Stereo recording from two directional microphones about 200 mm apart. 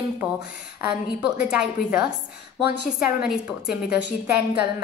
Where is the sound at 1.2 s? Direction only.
5° right (ahead or behind).